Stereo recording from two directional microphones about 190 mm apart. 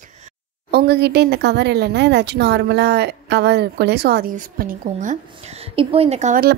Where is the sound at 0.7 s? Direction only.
55° right (ahead or behind); by 6.4 s 35° right (ahead or behind).